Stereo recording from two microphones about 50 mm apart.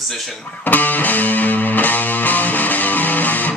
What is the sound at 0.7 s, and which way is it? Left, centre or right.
Music, left.